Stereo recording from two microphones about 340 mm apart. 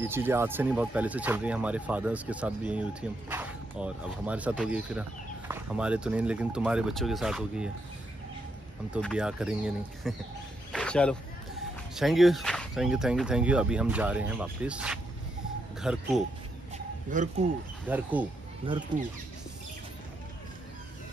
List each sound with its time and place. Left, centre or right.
0.0 s speech: centre
8.9 s speech: centre
10.7 s a sound: centre
11.9 s speech: centre
16.7 s chicken: right
17.8 s speech: centre